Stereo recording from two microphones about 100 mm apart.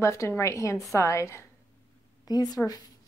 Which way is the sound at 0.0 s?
30° left (ahead or behind).